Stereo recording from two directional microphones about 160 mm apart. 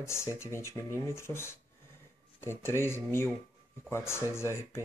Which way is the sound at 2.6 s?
15° left (ahead or behind).